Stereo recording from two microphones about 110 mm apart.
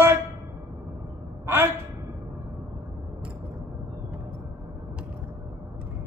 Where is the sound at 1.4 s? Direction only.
20° right (ahead or behind).